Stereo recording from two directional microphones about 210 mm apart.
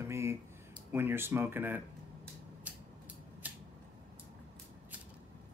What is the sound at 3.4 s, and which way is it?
Scissors, 10° right (ahead or behind).